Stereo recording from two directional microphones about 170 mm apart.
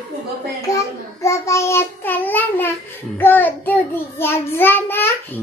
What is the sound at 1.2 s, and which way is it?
Child singing, 15° left (ahead or behind).